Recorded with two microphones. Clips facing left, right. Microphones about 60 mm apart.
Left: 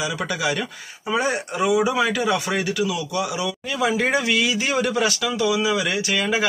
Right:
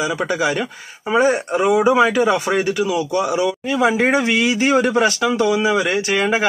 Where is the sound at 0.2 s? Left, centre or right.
Right.